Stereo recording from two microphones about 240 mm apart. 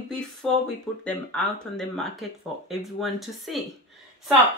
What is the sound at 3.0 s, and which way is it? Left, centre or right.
Speech, centre.